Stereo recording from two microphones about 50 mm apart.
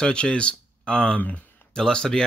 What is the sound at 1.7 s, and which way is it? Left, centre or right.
Speech, centre.